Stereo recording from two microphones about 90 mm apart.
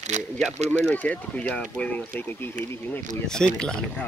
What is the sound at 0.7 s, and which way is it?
Speech, 20° left (ahead or behind).